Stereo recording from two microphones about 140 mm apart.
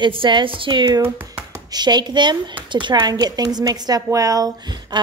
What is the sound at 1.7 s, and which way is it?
A woman's voice, 30° right (ahead or behind).